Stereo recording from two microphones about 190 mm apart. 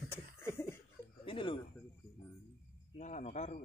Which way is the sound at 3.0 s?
40° left (ahead or behind).